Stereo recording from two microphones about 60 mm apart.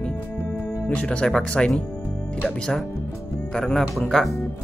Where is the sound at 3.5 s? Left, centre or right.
Centre.